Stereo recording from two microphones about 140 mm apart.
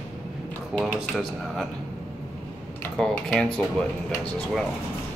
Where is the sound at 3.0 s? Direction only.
5° left (ahead or behind).